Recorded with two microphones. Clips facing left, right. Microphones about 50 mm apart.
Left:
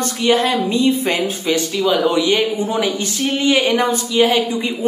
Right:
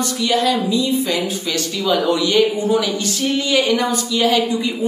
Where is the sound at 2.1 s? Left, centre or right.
Left.